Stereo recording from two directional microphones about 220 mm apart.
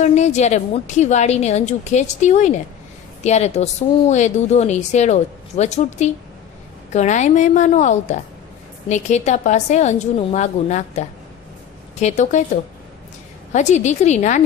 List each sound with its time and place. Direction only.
0.0 s a woman's voice: 30° left (ahead or behind)
13.5 s a woman's voice: 30° left (ahead or behind)